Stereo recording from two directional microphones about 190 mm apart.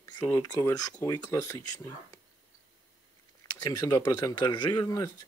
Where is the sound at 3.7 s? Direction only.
20° left (ahead or behind).